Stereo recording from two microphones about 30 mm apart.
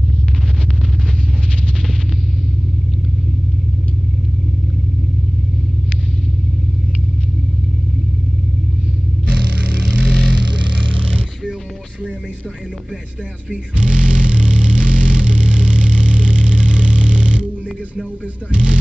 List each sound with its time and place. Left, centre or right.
9.3 s vehicle: right
13.5 s vehicle: right
18.5 s a sound: right